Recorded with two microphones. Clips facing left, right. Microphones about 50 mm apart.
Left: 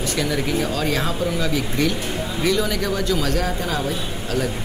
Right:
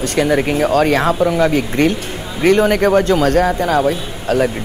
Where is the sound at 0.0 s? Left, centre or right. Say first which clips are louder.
Right 8 dB; right.